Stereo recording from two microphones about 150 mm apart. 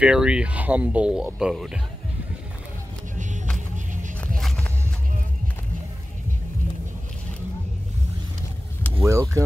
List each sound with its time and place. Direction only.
0.0 s speech: 5° right (ahead or behind)
3.5 s music: 55° right (ahead or behind)
4.4 s music: 5° left (ahead or behind)
9.0 s speech: 20° right (ahead or behind)